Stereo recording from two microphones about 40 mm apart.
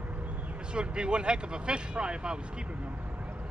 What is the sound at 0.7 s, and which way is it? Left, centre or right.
Speech, right.